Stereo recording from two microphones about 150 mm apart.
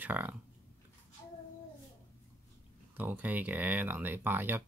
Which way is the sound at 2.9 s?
10° right (ahead or behind).